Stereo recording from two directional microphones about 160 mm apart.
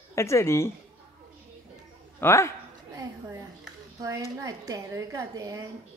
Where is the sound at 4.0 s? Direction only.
20° right (ahead or behind).